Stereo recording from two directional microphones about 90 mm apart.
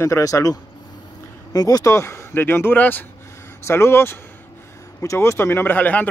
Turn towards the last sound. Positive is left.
turn(degrees=20)  # may be behind; listen again after turning